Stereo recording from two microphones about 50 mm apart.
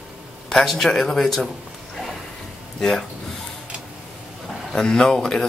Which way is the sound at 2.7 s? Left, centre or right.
Centre.